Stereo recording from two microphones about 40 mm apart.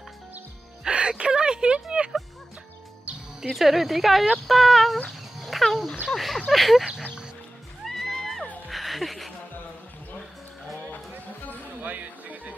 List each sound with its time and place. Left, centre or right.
0.8 s a sound: right
3.5 s a woman's voice: centre
5.4 s dog: centre
6.1 s a woman's voice: centre
7.8 s music: centre
11.8 s music: right